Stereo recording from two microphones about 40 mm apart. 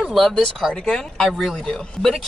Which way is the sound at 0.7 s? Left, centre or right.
Centre.